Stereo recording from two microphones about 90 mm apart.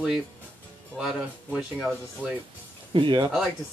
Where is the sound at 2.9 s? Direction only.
65° right (ahead or behind).